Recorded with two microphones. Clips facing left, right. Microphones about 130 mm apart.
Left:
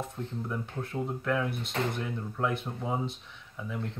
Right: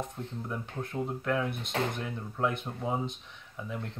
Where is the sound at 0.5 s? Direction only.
5° right (ahead or behind).